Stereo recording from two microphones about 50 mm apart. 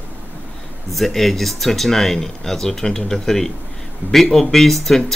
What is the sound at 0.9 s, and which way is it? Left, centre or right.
Speech, centre.